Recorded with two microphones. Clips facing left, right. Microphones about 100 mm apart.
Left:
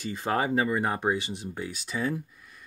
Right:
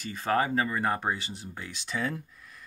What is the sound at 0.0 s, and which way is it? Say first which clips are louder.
Speech: even; 20° left (ahead or behind).